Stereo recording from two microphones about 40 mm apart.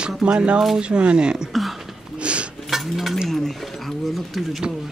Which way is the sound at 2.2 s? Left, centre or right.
Right.